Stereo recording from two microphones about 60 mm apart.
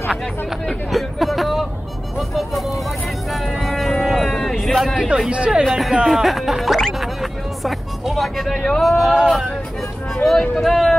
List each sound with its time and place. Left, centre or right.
0.1 s speech: centre
3.3 s vehicle: centre
4.0 s music: centre
4.9 s speech: centre
5.6 s speech: centre
6.0 s music: centre
8.6 s speech: centre